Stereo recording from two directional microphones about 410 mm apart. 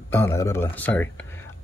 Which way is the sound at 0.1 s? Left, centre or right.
Centre.